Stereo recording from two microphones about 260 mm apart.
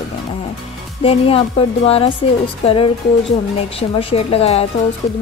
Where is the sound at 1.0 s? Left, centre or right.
Left.